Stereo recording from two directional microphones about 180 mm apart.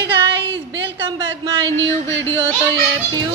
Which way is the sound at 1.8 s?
15° left (ahead or behind).